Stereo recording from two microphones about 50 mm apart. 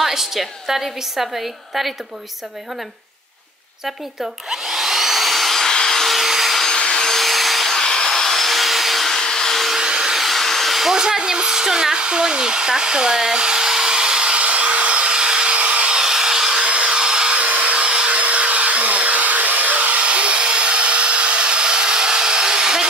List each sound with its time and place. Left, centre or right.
0.0 s a woman's voice: centre
3.8 s vacuum cleaner: centre
6.7 s wood: centre
7.8 s vacuum cleaner: centre
9.8 s vacuum cleaner: centre
10.2 s hair dryer: centre; by 16.0 s right
16.0 s a sound: centre
16.6 s vacuum cleaner: right
17.4 s vacuum cleaner: right
18.2 s hair dryer: right